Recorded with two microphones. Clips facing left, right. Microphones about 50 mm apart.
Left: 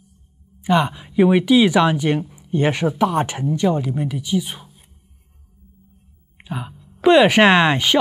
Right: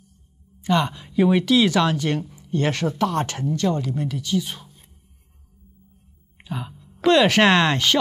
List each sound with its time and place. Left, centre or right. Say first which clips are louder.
0.6 s speech: left 3 dB; centre
6.3 s speech: left 2 dB; centre